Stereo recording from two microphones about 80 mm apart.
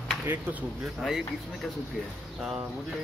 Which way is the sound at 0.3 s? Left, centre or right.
Centre.